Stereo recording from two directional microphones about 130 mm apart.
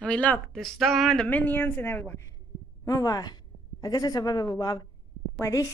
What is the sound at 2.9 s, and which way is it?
A woman's voice, 30° left (ahead or behind).